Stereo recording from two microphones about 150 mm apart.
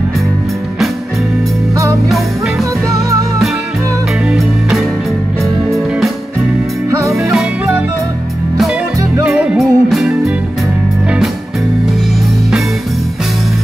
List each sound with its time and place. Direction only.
4.3 s music: centre (ahead or behind)
7.0 s music: 20° right (ahead or behind)
9.3 s music: centre (ahead or behind)